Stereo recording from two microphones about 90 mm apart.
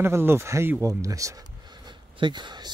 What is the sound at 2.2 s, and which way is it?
Speech, 60° right (ahead or behind).